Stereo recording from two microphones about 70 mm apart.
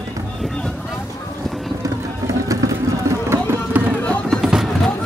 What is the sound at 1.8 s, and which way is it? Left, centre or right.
Run, right.